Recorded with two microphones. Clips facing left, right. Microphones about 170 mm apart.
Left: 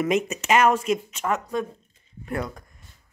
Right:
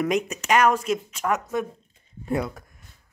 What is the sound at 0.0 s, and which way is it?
Speech, 5° left (ahead or behind).